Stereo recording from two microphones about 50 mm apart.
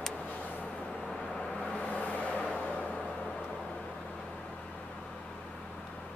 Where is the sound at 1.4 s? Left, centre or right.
Centre.